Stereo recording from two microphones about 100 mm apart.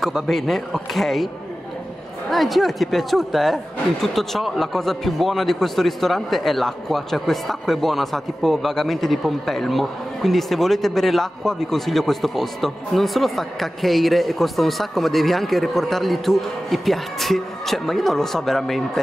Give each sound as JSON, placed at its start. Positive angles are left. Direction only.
{"t": 0.0, "sound": "speech", "side_deg": 0}